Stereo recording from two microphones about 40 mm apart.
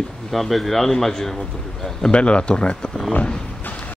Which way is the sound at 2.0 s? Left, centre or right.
Left.